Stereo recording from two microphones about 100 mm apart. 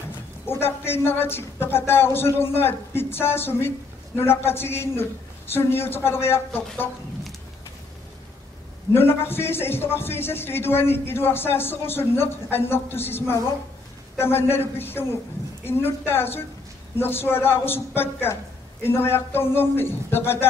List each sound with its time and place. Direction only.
0.5 s a man's voice: 25° left (ahead or behind)
8.9 s a man's voice: 20° left (ahead or behind)